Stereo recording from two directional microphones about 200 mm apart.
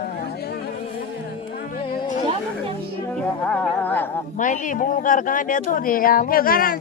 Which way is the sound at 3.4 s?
5° left (ahead or behind).